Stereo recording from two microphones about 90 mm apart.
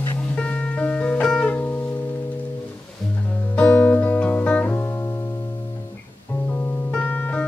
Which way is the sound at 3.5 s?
15° left (ahead or behind).